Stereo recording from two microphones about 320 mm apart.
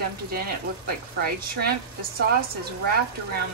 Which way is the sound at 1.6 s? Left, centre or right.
Right.